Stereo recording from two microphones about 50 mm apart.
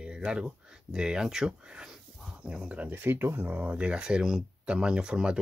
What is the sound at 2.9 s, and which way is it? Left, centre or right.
Speech, right.